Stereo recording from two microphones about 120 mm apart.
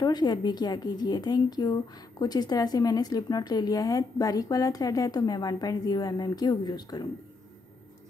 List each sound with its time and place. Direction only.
0.0 s a woman's voice: 35° left (ahead or behind)